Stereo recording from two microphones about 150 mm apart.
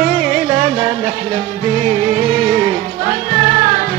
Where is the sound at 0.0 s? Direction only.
40° right (ahead or behind).